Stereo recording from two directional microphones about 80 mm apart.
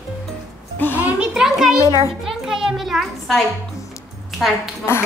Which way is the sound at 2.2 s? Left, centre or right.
Centre.